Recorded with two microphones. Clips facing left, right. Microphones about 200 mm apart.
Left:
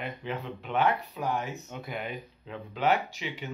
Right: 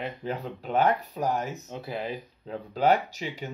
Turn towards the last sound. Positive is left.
turn(degrees=-40)  # may be behind; listen again after turning